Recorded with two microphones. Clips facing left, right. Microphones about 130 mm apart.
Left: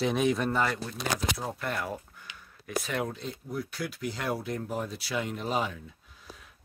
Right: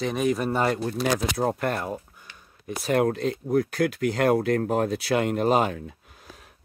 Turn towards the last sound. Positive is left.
turn(degrees=-65)  # may be behind; listen again after turning